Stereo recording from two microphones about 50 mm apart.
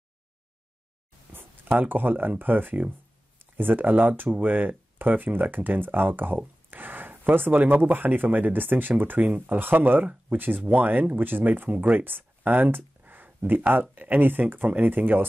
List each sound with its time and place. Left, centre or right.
1.3 s speech: right